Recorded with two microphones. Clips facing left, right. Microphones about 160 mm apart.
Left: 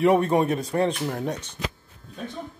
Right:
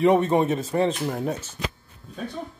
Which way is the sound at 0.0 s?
Centre (ahead or behind).